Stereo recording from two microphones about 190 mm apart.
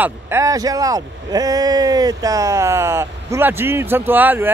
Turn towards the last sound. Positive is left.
turn(degrees=-10)  # may be behind; listen again after turning